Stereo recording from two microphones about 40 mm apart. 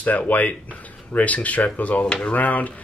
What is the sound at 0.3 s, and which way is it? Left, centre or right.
Speech, left.